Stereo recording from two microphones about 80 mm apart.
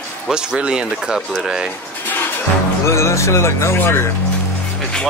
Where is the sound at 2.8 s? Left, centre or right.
Left.